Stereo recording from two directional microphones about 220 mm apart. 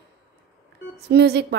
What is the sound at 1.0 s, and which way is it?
Music, 50° right (ahead or behind).